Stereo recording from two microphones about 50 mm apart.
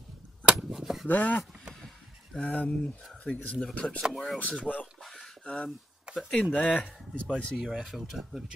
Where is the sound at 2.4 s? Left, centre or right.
Left.